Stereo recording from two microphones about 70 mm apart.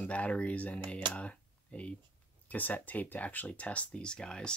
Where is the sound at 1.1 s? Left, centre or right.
Centre.